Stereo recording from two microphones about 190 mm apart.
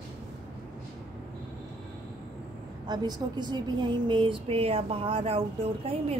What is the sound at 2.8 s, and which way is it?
Speech, 20° right (ahead or behind).